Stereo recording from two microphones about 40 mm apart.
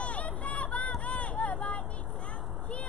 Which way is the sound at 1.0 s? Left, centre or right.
Left.